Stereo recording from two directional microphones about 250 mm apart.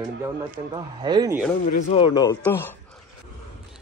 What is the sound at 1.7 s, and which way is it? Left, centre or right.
Speech, left.